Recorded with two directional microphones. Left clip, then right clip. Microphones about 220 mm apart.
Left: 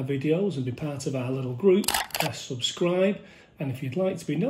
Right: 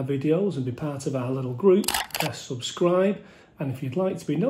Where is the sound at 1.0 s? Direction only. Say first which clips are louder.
Right 2 dB; centre (ahead or behind).